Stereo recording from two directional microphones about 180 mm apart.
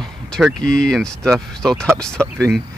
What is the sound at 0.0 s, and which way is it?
Speech, centre (ahead or behind).